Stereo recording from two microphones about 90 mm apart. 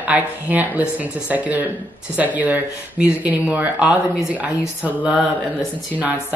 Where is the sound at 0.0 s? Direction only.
15° right (ahead or behind).